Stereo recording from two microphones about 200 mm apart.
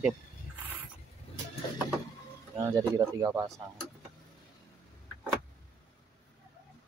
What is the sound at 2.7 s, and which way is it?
Speech, 15° right (ahead or behind).